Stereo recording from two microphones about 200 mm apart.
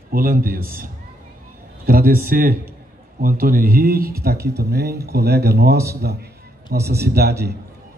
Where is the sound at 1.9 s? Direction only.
45° right (ahead or behind).